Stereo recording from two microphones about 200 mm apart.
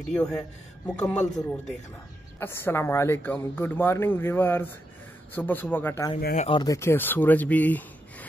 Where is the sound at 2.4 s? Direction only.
10° left (ahead or behind).